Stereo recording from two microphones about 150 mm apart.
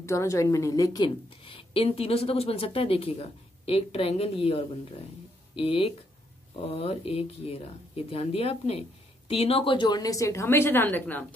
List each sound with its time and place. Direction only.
0.0 s a woman's voice: 20° left (ahead or behind)